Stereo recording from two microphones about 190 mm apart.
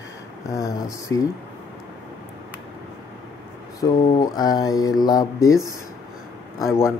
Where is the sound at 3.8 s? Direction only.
20° left (ahead or behind).